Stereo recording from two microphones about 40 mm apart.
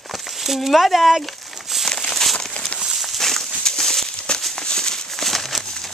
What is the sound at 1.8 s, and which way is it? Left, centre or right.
Crumpling, centre.